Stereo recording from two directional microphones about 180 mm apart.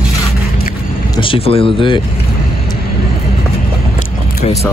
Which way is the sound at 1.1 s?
30° left (ahead or behind).